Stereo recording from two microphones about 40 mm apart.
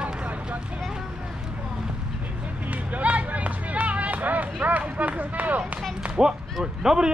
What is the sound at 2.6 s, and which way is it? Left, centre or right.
Speech, right.